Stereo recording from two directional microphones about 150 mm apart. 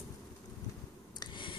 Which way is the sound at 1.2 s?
30° left (ahead or behind).